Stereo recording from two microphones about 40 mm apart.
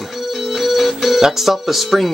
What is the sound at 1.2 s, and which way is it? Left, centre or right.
Speech, centre.